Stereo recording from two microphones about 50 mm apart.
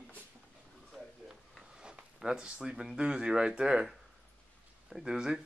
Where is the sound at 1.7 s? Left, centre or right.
Centre.